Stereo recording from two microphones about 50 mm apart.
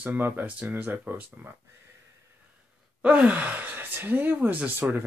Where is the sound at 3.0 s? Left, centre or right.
Right.